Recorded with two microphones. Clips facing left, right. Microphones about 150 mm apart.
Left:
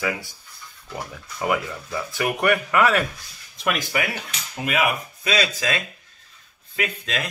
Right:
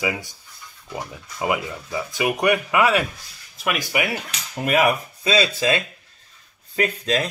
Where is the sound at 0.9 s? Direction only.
15° right (ahead or behind).